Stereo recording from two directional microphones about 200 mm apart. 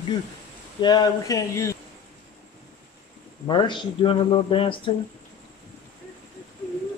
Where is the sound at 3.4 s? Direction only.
25° left (ahead or behind).